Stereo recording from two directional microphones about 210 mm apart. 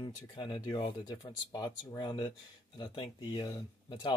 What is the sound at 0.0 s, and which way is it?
Speech, 20° left (ahead or behind).